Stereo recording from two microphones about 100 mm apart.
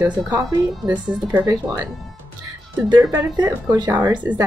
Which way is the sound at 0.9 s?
15° right (ahead or behind).